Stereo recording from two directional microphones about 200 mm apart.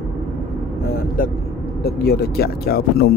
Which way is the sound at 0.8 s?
45° left (ahead or behind).